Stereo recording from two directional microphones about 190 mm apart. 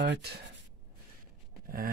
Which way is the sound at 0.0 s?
65° right (ahead or behind).